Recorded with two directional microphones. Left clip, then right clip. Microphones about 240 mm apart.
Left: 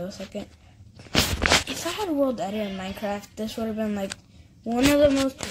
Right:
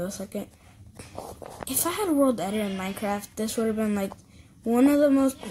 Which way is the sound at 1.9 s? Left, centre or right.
Centre.